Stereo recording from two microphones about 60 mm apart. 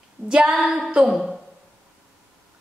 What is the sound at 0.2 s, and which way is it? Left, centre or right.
A woman's voice, centre.